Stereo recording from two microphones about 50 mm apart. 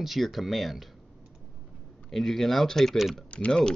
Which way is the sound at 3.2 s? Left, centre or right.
Left.